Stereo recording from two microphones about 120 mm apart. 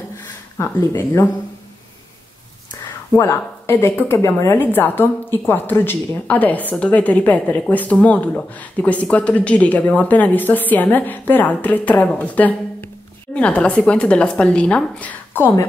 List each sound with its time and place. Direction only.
0.6 s speech: 20° left (ahead or behind)
3.2 s a woman's voice: 20° left (ahead or behind)